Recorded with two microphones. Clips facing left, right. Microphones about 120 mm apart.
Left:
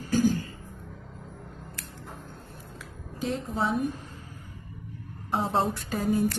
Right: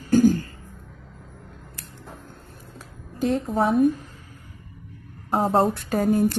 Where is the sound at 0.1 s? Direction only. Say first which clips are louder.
Right 7 dB; 50° right (ahead or behind).